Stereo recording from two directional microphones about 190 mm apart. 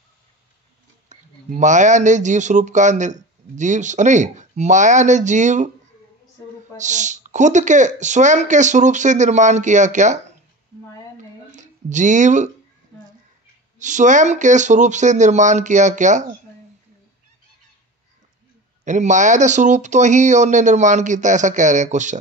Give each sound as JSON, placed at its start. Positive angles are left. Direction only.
{"t": 1.0, "sound": "speech", "side_deg": -40}
{"t": 6.8, "sound": "speech", "side_deg": -40}
{"t": 11.5, "sound": "speech", "side_deg": -40}
{"t": 13.7, "sound": "speech", "side_deg": -40}
{"t": 18.9, "sound": "speech", "side_deg": -40}